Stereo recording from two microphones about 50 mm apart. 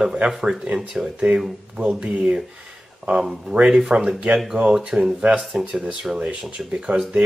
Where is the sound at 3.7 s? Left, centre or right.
Centre.